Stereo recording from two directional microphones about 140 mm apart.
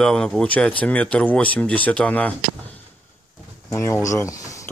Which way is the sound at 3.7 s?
20° left (ahead or behind).